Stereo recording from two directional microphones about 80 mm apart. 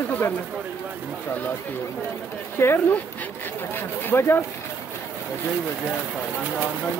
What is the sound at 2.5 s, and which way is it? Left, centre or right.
Speech, left.